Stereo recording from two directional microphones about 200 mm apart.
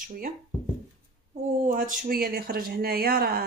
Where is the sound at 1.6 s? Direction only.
40° right (ahead or behind).